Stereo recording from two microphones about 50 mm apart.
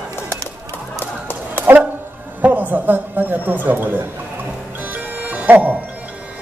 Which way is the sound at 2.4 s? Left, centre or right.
Right.